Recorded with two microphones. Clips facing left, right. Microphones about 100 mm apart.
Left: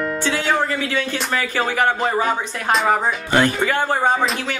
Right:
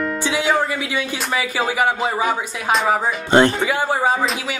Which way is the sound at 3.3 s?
25° right (ahead or behind).